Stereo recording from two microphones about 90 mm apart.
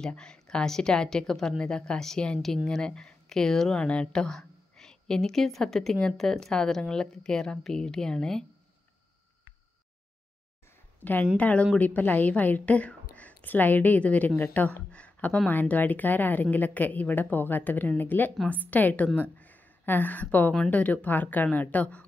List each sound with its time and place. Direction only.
0.0 s speech: 10° left (ahead or behind)
11.3 s a woman's voice: 15° left (ahead or behind)